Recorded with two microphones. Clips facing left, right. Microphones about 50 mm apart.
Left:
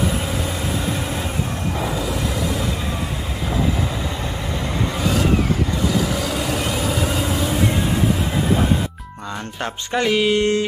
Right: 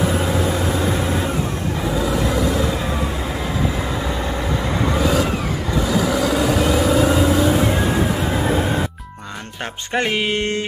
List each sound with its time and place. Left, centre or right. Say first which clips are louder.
4.9 s vehicle: left 1 dB; centre
9.9 s music: left 2 dB; right